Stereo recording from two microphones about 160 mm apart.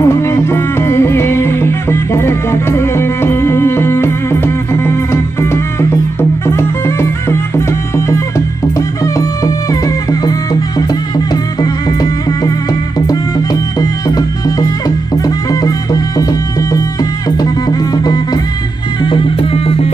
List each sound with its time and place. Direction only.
0.0 s music: 15° left (ahead or behind)
11.6 s music: 25° left (ahead or behind)
13.7 s music: 25° left (ahead or behind)
17.4 s music: 25° left (ahead or behind)